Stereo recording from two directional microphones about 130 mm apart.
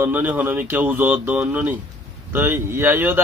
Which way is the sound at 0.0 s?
15° right (ahead or behind).